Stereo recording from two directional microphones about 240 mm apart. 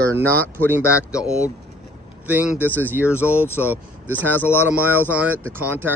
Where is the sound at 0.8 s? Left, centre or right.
Centre.